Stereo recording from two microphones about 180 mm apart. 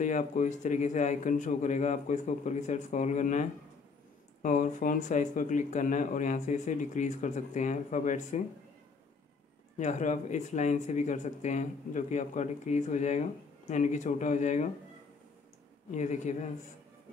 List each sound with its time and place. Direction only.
0.0 s speech: 45° left (ahead or behind)
9.8 s speech: 40° left (ahead or behind)
15.9 s speech: 40° left (ahead or behind)